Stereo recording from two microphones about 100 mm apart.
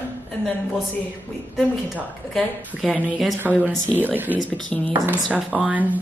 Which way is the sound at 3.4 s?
20° right (ahead or behind).